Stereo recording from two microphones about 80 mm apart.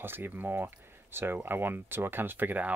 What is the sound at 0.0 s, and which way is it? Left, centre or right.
Speech, right.